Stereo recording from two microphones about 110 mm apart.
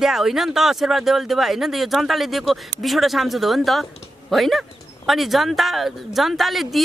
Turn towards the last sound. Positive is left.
turn(degrees=0)  # may be behind; listen again after turning